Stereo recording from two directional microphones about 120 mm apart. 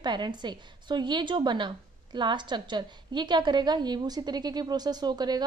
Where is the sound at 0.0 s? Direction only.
40° right (ahead or behind).